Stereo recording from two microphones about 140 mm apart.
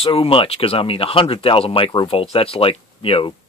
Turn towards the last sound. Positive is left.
turn(degrees=45)  # may be behind; listen again after turning